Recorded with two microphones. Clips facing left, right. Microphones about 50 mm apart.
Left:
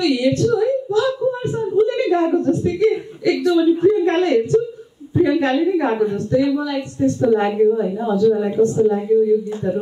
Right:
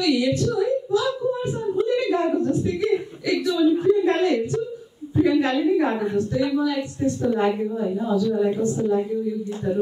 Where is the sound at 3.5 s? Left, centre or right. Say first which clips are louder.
Left 2 dB; left.